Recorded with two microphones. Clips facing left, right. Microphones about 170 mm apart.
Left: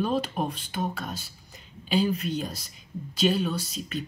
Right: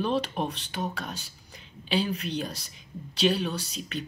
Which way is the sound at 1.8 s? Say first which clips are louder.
Left 3 dB; 45° left (ahead or behind).